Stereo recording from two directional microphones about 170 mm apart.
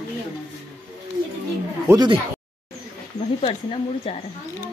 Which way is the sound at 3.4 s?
35° left (ahead or behind).